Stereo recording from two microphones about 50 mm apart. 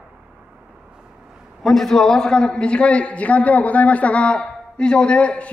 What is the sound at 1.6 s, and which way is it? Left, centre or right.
A man's voice, centre.